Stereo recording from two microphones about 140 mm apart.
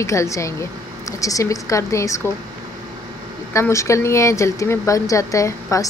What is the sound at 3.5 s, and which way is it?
Speech, 20° left (ahead or behind).